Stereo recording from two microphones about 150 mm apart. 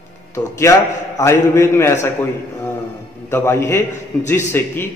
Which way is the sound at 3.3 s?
15° left (ahead or behind).